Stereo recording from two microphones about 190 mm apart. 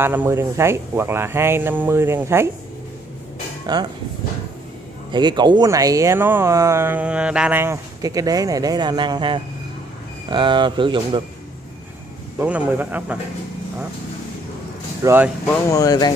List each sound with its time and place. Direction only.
0.0 s speech: 10° right (ahead or behind)
3.7 s speech: 20° right (ahead or behind)
5.1 s speech: 25° right (ahead or behind)
12.4 s speech: 10° right (ahead or behind)
15.0 s speech: 10° right (ahead or behind)
15.5 s speech: 20° left (ahead or behind)